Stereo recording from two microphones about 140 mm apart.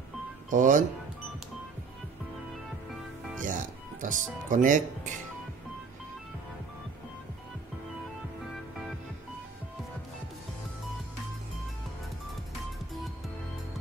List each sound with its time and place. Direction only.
0.5 s speech: 65° right (ahead or behind)
3.4 s speech: 70° right (ahead or behind)